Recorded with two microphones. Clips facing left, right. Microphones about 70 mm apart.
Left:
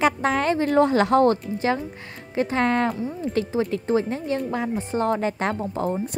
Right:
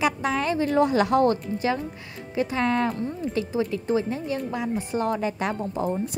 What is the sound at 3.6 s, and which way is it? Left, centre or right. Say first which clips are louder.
A woman's voice: left 1 dB; left.